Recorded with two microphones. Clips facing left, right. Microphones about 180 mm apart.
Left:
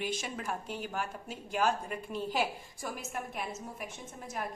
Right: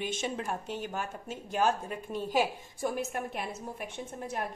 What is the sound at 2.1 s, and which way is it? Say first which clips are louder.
Speech: right 4 dB; 15° right (ahead or behind).